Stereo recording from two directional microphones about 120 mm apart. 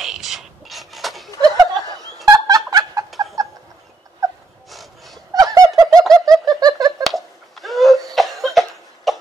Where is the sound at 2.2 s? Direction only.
30° right (ahead or behind).